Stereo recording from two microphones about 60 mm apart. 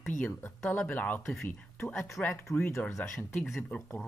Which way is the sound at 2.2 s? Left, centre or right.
Centre.